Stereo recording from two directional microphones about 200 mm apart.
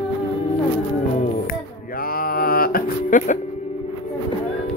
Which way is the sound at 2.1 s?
45° left (ahead or behind).